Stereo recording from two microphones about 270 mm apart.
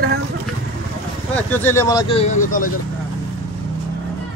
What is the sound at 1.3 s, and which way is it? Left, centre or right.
Speech, centre.